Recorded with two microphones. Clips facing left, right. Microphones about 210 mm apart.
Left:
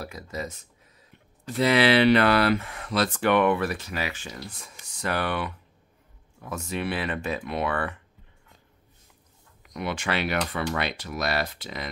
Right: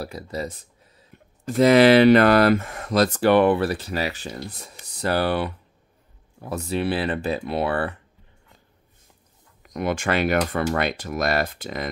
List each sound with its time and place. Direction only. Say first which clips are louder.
0.0 s speech: right 4 dB; 35° right (ahead or behind)
1.4 s speech: right 7 dB; 45° right (ahead or behind)
9.6 s speech: right 6 dB; 45° right (ahead or behind)